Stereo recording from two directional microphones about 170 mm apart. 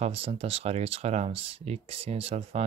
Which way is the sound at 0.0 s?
35° right (ahead or behind).